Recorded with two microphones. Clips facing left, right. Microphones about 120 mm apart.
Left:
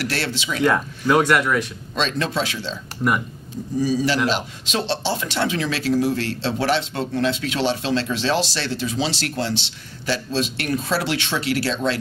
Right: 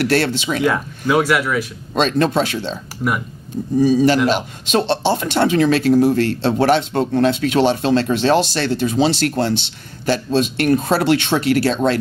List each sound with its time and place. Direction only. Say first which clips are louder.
0.0 s speech: right 9 dB; 50° right (ahead or behind)
0.7 s speech: left 1 dB; centre (ahead or behind)
2.0 s speech: right 7 dB; 50° right (ahead or behind)
3.0 s speech: even; 5° right (ahead or behind)
3.8 s speech: right 7 dB; 50° right (ahead or behind)